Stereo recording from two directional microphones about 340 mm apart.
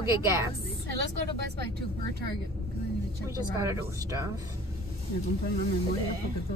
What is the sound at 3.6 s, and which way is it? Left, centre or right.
Speech, centre.